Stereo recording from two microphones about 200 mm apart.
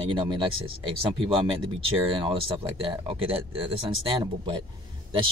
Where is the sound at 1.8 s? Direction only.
25° right (ahead or behind).